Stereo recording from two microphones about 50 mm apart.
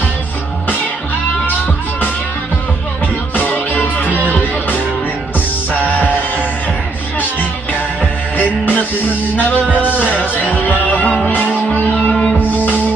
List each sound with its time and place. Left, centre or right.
3.3 s music: left
8.0 s music: left
12.1 s music: centre
12.4 s music: left